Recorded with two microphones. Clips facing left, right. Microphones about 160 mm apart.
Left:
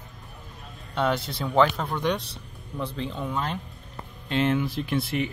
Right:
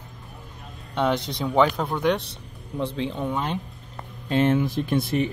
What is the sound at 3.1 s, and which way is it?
Speech, 20° right (ahead or behind).